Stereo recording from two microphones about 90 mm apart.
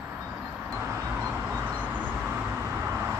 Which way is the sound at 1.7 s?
20° right (ahead or behind).